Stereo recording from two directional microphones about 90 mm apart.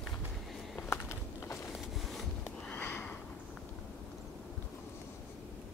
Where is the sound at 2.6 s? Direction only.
20° left (ahead or behind).